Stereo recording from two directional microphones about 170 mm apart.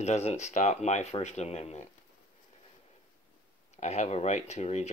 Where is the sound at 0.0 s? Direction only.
40° left (ahead or behind).